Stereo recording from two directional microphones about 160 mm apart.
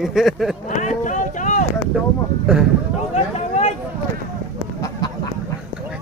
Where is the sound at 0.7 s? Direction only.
50° left (ahead or behind).